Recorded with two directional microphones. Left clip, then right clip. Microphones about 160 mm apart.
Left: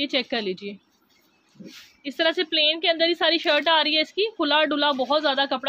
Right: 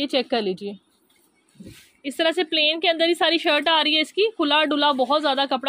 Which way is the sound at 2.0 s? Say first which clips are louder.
Right 1 dB; 30° right (ahead or behind).